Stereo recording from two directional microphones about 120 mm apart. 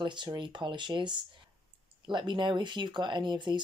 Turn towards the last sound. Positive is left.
turn(degrees=-40)  # may be behind; listen again after turning